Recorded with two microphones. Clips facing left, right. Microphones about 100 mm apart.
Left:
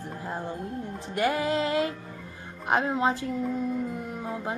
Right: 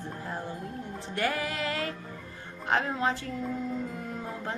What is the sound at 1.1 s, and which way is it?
Music, 20° left (ahead or behind).